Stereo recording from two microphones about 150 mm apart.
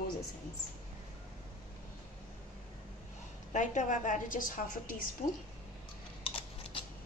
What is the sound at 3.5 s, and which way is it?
A woman's voice, 55° left (ahead or behind).